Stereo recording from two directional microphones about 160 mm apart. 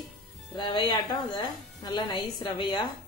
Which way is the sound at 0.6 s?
25° left (ahead or behind).